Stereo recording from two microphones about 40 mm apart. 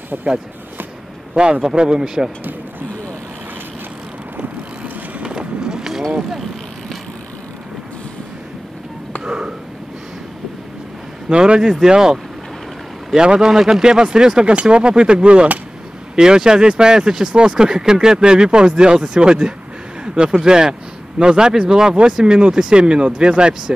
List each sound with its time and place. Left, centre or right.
0.1 s speech: right
1.3 s speech: centre
5.2 s vehicle: right
9.2 s a sound: centre
11.2 s speech: right